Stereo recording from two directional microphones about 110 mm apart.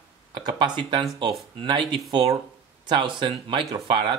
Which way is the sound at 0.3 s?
45° right (ahead or behind).